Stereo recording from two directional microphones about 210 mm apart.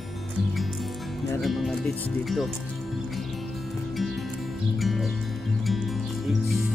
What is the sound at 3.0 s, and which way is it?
Music, centre (ahead or behind).